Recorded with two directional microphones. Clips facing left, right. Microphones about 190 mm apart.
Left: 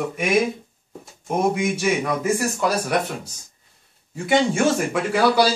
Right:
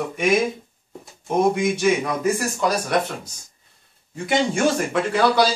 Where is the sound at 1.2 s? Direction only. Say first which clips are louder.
Right 2 dB; 5° left (ahead or behind).